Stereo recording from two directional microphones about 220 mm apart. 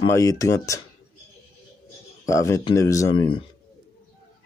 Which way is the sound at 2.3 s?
15° left (ahead or behind).